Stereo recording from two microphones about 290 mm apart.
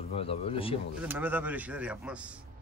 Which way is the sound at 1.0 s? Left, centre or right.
Centre.